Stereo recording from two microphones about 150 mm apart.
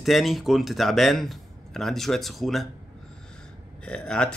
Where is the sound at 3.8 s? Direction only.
5° left (ahead or behind).